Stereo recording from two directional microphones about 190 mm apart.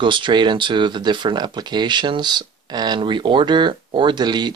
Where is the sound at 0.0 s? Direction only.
25° right (ahead or behind).